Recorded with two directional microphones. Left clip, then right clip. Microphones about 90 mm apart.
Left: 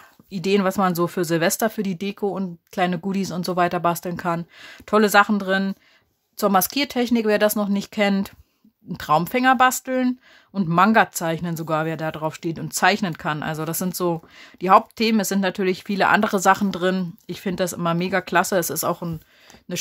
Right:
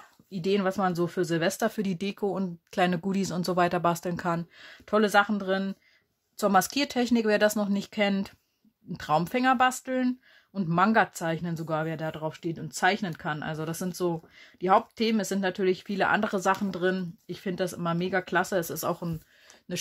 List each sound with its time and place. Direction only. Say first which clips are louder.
0.3 s speech: left 6 dB; 40° left (ahead or behind)
1.7 s speech: left 4 dB; 15° left (ahead or behind)
4.6 s speech: left 7 dB; 45° left (ahead or behind)
6.3 s speech: left 4 dB; 30° left (ahead or behind); by 12.3 s 45° left (ahead or behind)
12.3 s speech: left 7 dB; 70° left (ahead or behind); by 18.9 s 55° left (ahead or behind)
18.9 s speech: left 6 dB; 35° left (ahead or behind)